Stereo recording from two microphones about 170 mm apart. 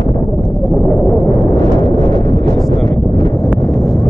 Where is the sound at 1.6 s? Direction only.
30° right (ahead or behind).